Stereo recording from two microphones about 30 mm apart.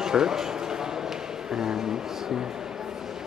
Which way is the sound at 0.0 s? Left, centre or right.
Right.